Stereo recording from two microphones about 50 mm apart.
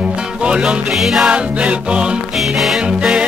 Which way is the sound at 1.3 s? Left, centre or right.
Right.